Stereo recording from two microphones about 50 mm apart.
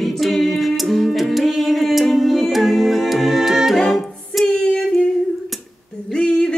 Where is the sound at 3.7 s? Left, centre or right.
Centre.